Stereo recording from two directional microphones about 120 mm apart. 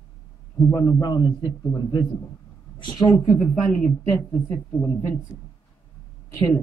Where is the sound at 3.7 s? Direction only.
10° left (ahead or behind).